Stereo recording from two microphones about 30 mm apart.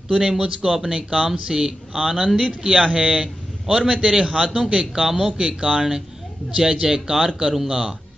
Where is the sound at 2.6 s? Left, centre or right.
Right.